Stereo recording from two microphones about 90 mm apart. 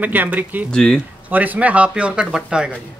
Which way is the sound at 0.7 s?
10° left (ahead or behind).